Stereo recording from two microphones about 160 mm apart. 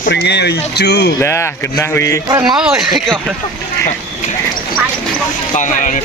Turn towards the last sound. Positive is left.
turn(degrees=50)  # may be behind; listen again after turning